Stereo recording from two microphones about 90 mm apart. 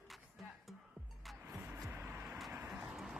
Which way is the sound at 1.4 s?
25° right (ahead or behind).